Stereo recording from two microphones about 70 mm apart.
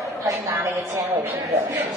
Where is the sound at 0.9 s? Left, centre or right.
Right.